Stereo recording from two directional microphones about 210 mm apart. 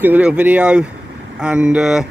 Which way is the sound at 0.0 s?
5° right (ahead or behind).